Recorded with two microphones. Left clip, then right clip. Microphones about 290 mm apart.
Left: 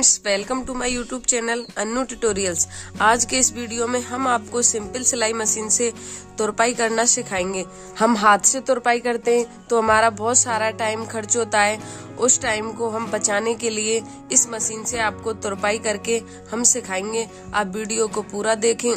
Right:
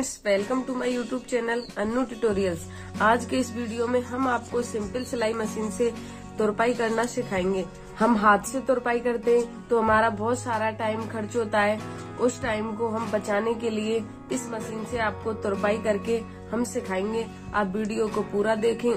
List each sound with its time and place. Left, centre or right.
0.2 s speech: left
15.0 s speech: left